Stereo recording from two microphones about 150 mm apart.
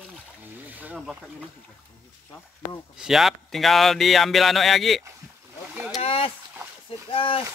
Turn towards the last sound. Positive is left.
turn(degrees=35)  # may be behind; listen again after turning